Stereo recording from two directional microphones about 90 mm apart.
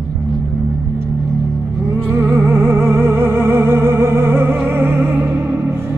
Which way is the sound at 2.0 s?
25° right (ahead or behind).